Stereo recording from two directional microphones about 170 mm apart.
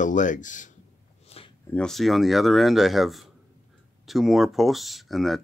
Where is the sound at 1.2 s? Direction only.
35° left (ahead or behind).